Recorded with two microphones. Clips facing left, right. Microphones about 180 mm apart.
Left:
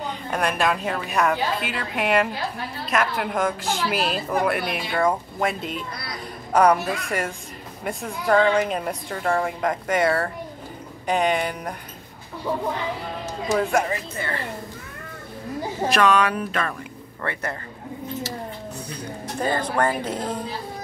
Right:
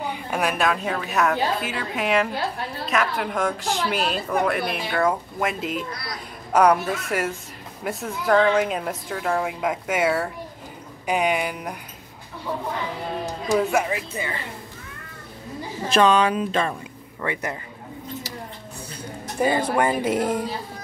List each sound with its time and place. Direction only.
0.0 s a woman's voice: 10° right (ahead or behind)
13.2 s speech: 10° right (ahead or behind)
15.9 s speech: 25° right (ahead or behind)
19.4 s speech: 10° right (ahead or behind)